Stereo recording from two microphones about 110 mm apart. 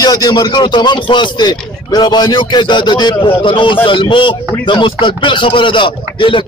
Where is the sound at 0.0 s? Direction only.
40° left (ahead or behind).